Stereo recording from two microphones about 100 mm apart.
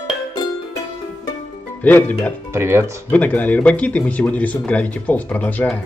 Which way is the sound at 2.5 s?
25° right (ahead or behind).